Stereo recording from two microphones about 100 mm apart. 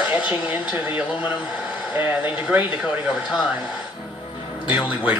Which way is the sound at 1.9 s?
15° right (ahead or behind).